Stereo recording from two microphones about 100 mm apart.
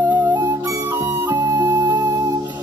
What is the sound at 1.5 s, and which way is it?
Music, 50° right (ahead or behind).